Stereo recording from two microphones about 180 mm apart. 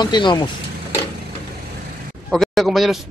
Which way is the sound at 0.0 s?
25° left (ahead or behind).